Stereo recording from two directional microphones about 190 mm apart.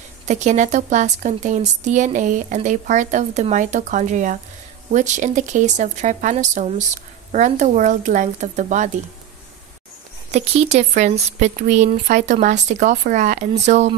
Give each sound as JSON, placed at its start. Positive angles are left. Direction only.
{"t": 0.3, "sound": "speech", "side_deg": -40}
{"t": 10.3, "sound": "speech", "side_deg": -35}